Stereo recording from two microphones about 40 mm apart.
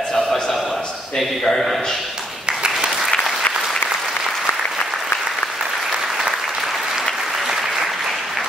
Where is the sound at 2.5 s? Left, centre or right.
Right.